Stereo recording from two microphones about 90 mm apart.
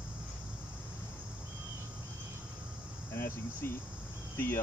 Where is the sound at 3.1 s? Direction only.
25° left (ahead or behind).